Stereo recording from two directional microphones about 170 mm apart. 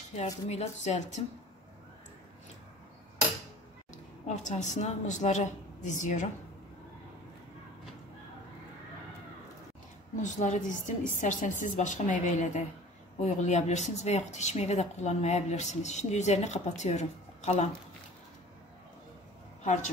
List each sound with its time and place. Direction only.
0.1 s a woman's voice: 40° left (ahead or behind)
3.9 s a woman's voice: 45° left (ahead or behind)
10.2 s speech: 45° left (ahead or behind)